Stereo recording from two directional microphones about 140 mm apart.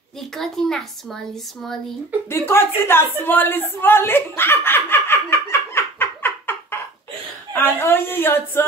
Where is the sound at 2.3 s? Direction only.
15° left (ahead or behind).